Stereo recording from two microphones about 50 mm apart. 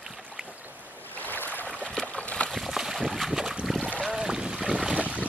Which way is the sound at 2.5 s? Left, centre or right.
Centre.